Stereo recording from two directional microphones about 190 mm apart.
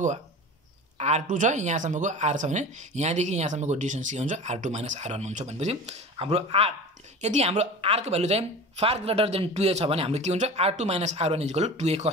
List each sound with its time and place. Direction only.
0.9 s speech: 35° right (ahead or behind)